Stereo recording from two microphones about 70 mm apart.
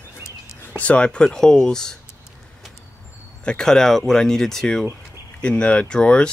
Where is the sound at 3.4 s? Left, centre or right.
Centre.